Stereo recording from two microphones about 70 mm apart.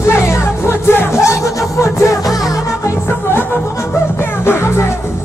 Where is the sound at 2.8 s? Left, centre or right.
Left.